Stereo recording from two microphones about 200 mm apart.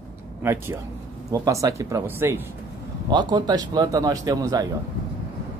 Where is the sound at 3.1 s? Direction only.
20° right (ahead or behind).